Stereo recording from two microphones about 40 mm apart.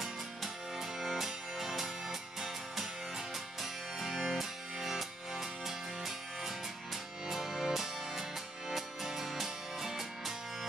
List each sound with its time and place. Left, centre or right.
0.9 s music: centre
4.0 s music: centre